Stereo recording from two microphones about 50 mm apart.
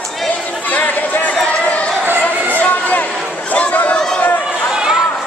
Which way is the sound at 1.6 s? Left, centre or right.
Left.